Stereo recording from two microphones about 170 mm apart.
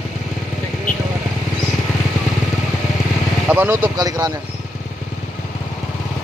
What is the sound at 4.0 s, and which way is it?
Speech, 25° right (ahead or behind).